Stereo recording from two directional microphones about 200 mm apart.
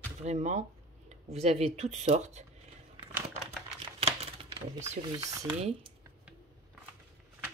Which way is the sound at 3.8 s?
30° right (ahead or behind).